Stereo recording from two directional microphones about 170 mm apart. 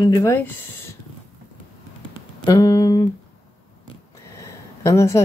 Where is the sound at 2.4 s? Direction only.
20° left (ahead or behind).